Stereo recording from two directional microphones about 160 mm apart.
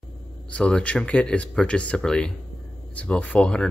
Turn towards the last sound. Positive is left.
turn(degrees=5)  # may be behind; listen again after turning